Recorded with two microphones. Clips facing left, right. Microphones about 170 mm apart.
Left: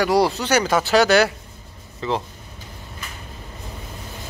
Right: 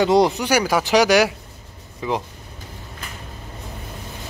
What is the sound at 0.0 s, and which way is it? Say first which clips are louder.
Speech: right 2 dB; 20° right (ahead or behind).